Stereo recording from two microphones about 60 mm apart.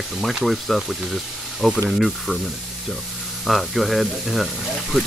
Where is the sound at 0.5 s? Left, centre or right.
Centre.